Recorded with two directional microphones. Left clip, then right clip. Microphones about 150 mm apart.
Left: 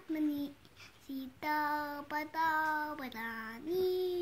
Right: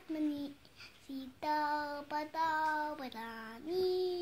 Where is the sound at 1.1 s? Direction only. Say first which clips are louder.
Even; 30° left (ahead or behind).